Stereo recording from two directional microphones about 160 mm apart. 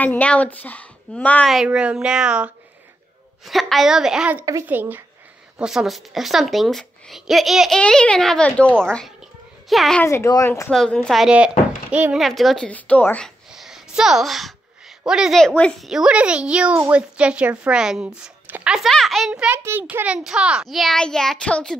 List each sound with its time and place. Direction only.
0.0 s speech: 10° left (ahead or behind)
10.0 s speech: 20° left (ahead or behind)
10.7 s speech: 5° left (ahead or behind)
13.5 s a woman's voice: centre (ahead or behind)